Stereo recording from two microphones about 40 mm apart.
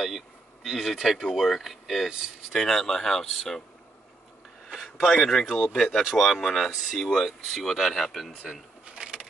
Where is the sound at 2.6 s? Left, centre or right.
Centre.